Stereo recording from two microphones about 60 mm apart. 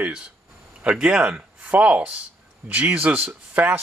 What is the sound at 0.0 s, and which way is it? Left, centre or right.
Speech, right.